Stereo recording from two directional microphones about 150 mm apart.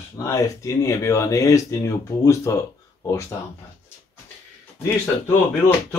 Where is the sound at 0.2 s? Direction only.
20° left (ahead or behind).